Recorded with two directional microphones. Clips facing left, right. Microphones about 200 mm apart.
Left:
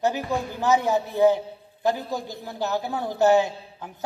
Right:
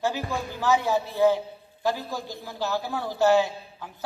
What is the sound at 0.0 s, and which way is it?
A man's voice, 20° left (ahead or behind).